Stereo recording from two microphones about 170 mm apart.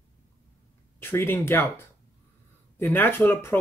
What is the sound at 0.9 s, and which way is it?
Speech, 15° left (ahead or behind).